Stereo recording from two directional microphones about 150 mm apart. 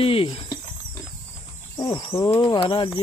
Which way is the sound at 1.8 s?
25° left (ahead or behind).